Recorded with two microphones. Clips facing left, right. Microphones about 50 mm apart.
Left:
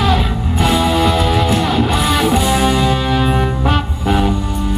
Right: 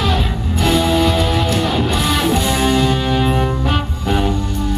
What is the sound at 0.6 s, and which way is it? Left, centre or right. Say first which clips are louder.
Music: left 1 dB; centre.